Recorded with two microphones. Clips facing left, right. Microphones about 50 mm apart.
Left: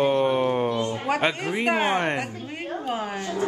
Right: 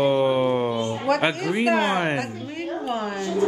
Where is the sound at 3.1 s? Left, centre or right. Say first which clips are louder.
Right 3 dB; left.